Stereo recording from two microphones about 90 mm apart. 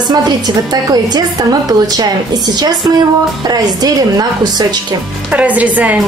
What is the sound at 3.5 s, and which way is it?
A woman's voice, 45° right (ahead or behind).